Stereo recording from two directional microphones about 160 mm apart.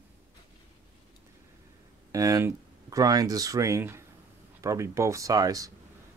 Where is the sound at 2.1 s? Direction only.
20° right (ahead or behind).